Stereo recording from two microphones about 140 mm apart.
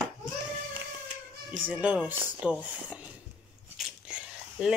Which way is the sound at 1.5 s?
10° right (ahead or behind).